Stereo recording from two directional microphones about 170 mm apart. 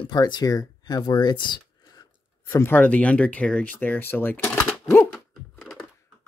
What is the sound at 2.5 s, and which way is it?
Speech, 10° left (ahead or behind).